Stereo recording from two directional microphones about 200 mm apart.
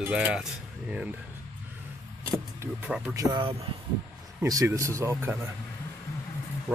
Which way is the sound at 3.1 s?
20° right (ahead or behind).